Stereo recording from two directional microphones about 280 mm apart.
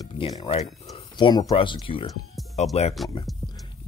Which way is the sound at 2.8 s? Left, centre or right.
Left.